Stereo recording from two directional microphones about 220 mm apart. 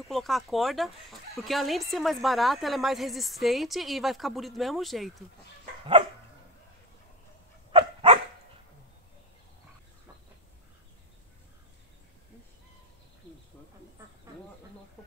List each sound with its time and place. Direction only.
0.1 s speech: centre (ahead or behind)
7.7 s dog: 25° right (ahead or behind)